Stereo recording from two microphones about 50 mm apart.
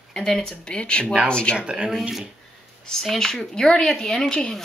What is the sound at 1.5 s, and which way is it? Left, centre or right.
Speech, centre.